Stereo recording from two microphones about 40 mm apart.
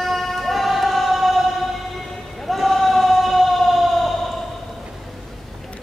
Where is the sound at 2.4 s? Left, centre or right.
Centre.